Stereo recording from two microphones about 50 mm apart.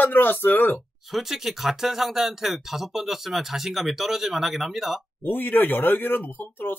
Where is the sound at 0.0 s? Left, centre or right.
Left.